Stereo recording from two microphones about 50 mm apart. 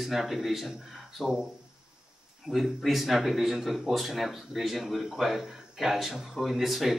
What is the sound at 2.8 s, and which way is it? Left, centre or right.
Speech, centre.